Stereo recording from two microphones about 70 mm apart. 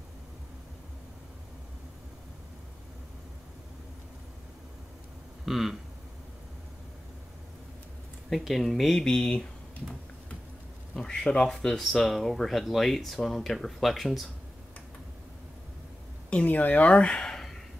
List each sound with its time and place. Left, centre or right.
5.4 s a sound: centre
8.3 s speech: centre
11.0 s speech: centre
16.4 s speech: left; by 17.6 s centre